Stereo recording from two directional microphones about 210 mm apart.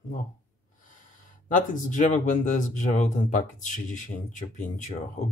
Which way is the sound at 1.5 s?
40° left (ahead or behind).